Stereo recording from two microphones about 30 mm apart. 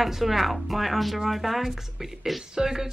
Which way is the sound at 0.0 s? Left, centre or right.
Centre.